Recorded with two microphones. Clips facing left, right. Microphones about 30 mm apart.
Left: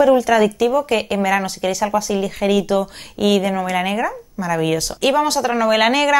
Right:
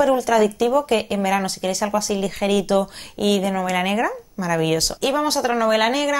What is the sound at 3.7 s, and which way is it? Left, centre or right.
Speech, centre.